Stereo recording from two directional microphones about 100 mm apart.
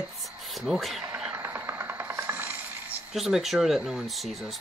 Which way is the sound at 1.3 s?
20° right (ahead or behind).